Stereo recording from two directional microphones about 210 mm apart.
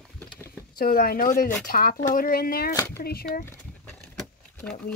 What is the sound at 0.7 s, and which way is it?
Speech, 45° left (ahead or behind).